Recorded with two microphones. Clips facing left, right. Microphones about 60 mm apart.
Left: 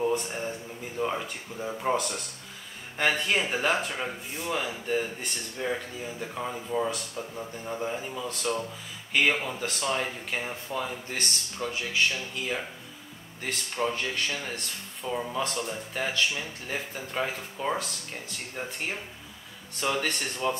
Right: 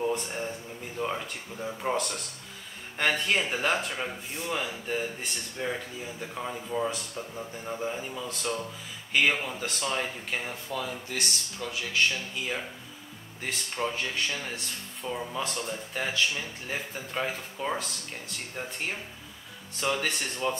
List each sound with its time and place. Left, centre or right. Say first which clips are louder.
0.0 s speech: left 2 dB; centre
10.7 s speech: even; left
11.9 s speech: right 2 dB; centre